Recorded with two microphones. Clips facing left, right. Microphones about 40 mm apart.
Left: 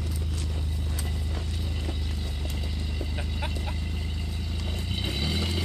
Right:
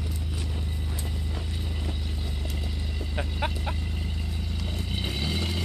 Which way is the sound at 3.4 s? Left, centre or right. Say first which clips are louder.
Right 6 dB; right.